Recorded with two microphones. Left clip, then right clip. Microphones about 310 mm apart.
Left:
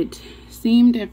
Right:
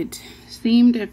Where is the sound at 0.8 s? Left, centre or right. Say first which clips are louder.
Even; centre.